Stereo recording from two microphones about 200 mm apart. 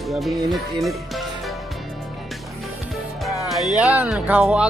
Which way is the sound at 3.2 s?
Centre (ahead or behind).